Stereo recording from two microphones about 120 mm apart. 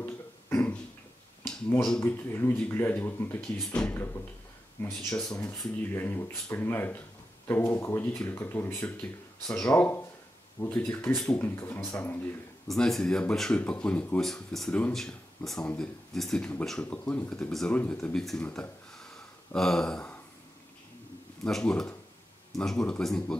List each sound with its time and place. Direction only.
0.0 s beatboxing: 15° left (ahead or behind)
1.8 s speech: 5° left (ahead or behind)
2.0 s speech: 20° left (ahead or behind)
5.9 s speech: 15° left (ahead or behind)
9.5 s speech: 5° left (ahead or behind)
12.6 s speech: 5° left (ahead or behind)
21.5 s speech: 5° left (ahead or behind)